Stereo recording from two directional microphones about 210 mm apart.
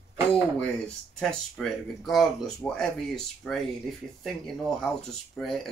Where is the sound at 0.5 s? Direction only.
5° left (ahead or behind).